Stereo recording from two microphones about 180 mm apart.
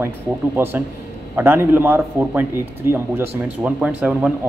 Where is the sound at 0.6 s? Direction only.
10° right (ahead or behind).